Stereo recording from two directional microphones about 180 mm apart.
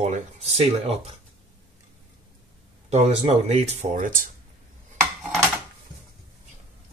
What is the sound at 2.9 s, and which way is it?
Speech, 35° right (ahead or behind).